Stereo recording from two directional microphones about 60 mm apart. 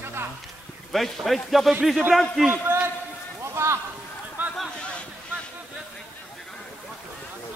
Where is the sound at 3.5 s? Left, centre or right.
Right.